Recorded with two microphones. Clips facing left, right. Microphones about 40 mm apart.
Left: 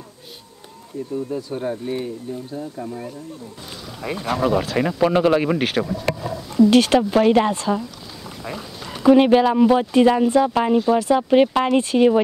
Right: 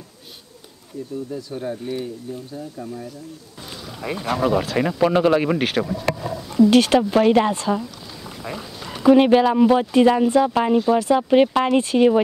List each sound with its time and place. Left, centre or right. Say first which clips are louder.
1.1 s speech: left 4 dB; centre
2.7 s speech: left 2 dB; left
4.0 s speech: even; centre